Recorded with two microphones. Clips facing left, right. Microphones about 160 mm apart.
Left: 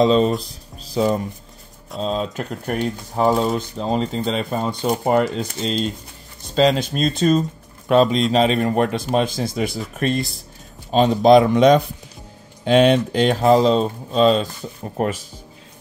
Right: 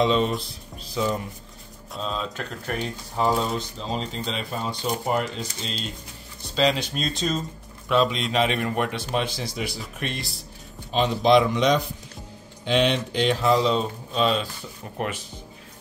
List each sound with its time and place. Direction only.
0.0 s a man's voice: 35° left (ahead or behind)
0.4 s a sound: 40° left (ahead or behind)
2.0 s speech: 40° left (ahead or behind); by 7.4 s 55° left (ahead or behind)
7.9 s speech: 45° left (ahead or behind)
8.3 s a man's voice: 35° left (ahead or behind)